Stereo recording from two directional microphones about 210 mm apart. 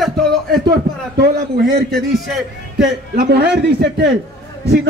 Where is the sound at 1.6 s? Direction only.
Centre (ahead or behind).